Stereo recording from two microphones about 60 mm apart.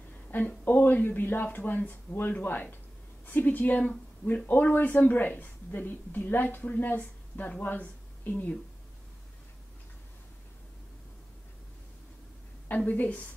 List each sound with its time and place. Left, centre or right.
0.3 s a woman's voice: left
12.6 s a woman's voice: left